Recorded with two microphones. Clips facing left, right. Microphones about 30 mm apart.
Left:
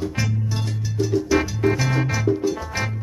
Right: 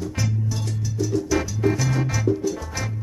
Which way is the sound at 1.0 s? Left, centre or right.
Left.